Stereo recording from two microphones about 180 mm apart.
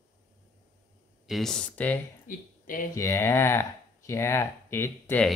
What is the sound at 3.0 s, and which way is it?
Speech, 15° left (ahead or behind).